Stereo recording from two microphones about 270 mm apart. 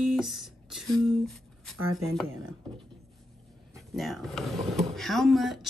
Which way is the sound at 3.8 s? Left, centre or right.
Centre.